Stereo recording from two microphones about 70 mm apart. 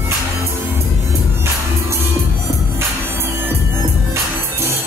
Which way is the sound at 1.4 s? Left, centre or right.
Right.